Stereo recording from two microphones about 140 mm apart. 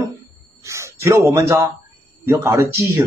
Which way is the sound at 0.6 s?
20° right (ahead or behind).